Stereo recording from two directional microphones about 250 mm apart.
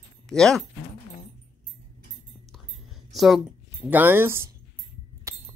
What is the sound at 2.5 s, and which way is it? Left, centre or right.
Whispering, centre.